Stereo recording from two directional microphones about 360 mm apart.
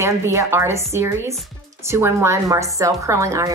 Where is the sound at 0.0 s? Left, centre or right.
Centre.